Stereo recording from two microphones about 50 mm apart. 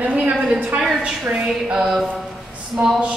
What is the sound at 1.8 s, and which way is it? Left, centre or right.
Speech, centre.